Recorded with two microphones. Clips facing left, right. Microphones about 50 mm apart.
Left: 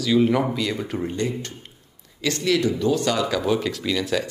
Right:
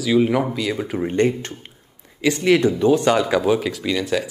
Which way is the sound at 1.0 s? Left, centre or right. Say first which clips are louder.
Right 11 dB; right.